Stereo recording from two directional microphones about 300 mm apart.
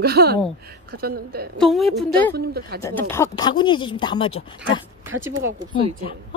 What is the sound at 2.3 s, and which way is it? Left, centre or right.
Speech, right.